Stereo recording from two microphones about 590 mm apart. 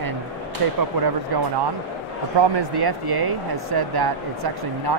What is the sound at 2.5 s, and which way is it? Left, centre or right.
Speech, right.